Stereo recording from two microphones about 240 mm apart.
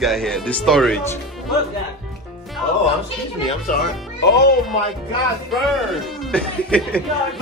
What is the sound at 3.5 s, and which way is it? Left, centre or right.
Speech, left.